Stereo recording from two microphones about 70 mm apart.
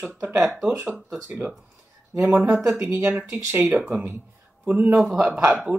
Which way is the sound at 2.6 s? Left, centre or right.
Right.